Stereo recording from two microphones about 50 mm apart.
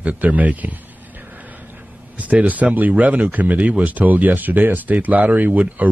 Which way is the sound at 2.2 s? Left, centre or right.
Right.